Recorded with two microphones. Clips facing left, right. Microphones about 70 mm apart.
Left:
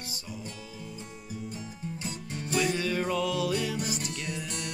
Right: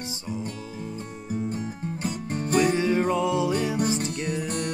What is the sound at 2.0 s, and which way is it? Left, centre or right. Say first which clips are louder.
Music: right 10 dB; right.